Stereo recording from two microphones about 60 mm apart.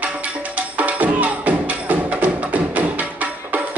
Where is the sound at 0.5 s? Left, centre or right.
Right.